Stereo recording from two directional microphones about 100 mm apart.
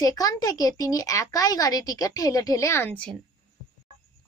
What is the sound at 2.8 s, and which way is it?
Speech, 10° left (ahead or behind).